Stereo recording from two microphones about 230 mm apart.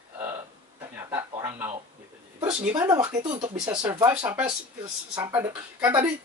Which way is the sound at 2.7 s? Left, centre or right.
Centre.